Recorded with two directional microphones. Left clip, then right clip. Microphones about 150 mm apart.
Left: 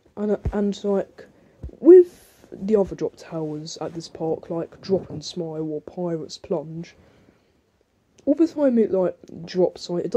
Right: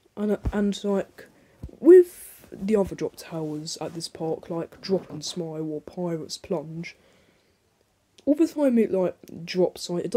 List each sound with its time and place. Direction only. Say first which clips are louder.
0.1 s a sound: left 3 dB; 25° right (ahead or behind)
0.5 s speech: left 3 dB; 30° right (ahead or behind)
8.2 s speech: left 2 dB; 25° right (ahead or behind)